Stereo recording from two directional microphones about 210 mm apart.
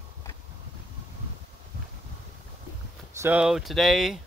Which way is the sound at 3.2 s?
5° right (ahead or behind).